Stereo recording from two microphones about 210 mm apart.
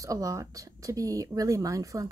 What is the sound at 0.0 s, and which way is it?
Speech, 15° right (ahead or behind).